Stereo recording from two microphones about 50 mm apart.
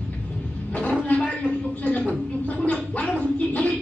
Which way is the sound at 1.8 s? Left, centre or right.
Left.